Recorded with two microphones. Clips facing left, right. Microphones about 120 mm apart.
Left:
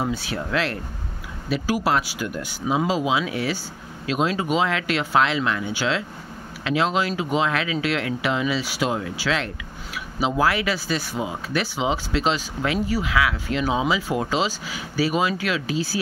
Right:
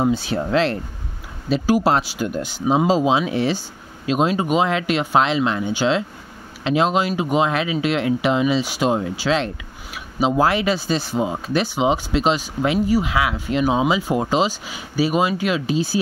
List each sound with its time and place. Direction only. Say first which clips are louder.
0.0 s speech: right 6 dB; 25° right (ahead or behind)